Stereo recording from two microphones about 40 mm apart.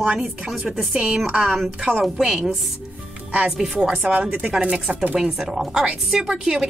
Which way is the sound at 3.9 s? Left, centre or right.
Right.